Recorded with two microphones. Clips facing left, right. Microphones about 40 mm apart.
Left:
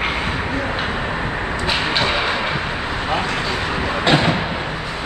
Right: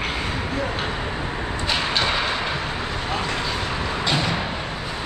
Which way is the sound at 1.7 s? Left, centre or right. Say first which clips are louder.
Left 3 dB; centre.